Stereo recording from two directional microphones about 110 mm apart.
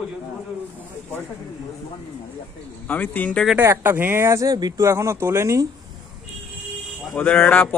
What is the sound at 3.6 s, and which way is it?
Speech, 20° right (ahead or behind).